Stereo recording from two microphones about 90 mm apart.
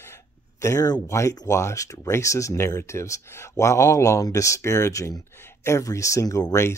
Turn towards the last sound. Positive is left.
turn(degrees=35)  # may be behind; listen again after turning